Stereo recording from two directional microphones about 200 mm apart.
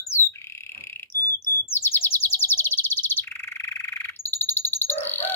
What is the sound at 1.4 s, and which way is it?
Chirp, 10° left (ahead or behind).